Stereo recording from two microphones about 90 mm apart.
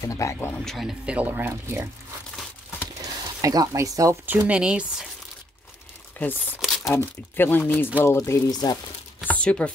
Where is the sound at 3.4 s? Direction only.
40° right (ahead or behind).